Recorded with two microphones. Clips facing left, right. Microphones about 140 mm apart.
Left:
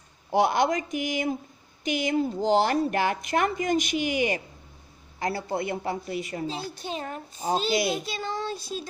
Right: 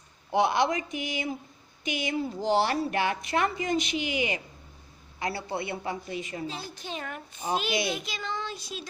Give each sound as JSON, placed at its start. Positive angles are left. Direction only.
{"t": 0.3, "sound": "a woman's voice", "side_deg": 40}